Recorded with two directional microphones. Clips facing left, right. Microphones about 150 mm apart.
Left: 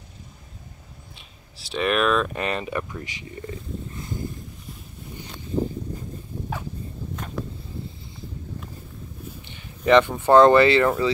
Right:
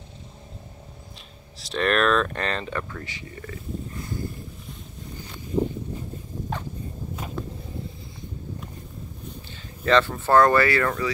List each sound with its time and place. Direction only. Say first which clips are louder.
1.6 s speech: even; 5° left (ahead or behind); by 3.5 s 20° left (ahead or behind)
9.5 s speech: left 4 dB; 15° left (ahead or behind)